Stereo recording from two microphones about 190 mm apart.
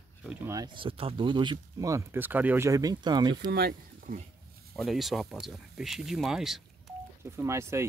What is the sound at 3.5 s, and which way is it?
Speech, 55° right (ahead or behind).